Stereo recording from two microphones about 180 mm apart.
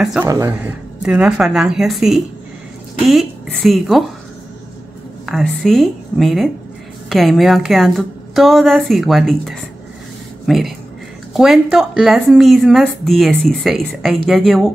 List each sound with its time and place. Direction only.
0.0 s speech: 5° right (ahead or behind)
0.3 s speech: 15° right (ahead or behind)
1.0 s speech: 5° right (ahead or behind)
5.2 s speech: centre (ahead or behind)